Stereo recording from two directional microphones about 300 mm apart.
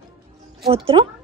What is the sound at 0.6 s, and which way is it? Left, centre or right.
Speech, centre.